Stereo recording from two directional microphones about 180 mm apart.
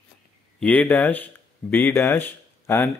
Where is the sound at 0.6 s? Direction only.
5° left (ahead or behind).